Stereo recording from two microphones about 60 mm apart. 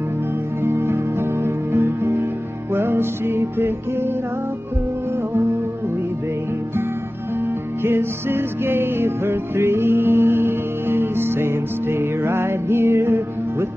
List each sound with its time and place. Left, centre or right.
0.7 s music: right
7.8 s music: right